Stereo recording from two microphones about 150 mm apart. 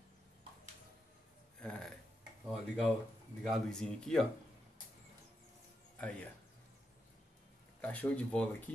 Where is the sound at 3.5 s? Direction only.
5° left (ahead or behind).